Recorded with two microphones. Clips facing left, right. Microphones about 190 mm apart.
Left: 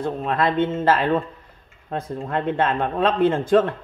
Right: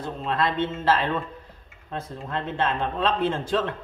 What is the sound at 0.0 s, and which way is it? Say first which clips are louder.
Speech: left 4 dB; 55° left (ahead or behind).